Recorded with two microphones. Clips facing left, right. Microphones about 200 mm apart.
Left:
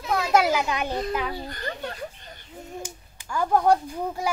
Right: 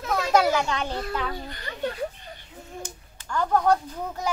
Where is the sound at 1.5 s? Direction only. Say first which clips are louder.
Left 5 dB; 45° left (ahead or behind).